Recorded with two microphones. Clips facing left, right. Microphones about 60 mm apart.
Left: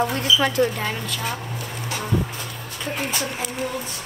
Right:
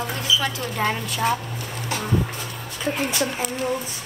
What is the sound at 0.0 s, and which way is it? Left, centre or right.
Speech, left.